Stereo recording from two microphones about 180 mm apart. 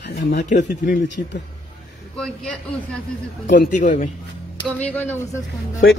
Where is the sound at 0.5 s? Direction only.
45° left (ahead or behind).